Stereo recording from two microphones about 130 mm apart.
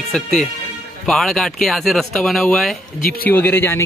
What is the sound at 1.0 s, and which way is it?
Speech, centre (ahead or behind).